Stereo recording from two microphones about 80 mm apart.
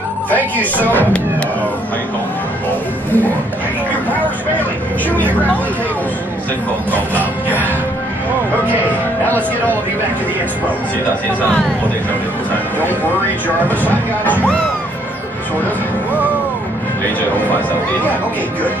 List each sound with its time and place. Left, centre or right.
0.8 s speech: left
7.4 s music: right
13.7 s speech: left